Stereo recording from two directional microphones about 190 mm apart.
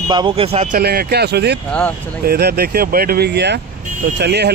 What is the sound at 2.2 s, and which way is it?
Speech, 55° right (ahead or behind).